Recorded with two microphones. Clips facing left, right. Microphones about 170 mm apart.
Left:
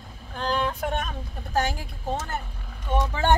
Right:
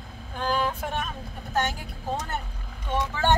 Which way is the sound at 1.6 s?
Centre (ahead or behind).